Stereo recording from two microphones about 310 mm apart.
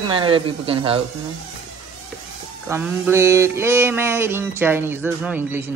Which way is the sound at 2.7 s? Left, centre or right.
Centre.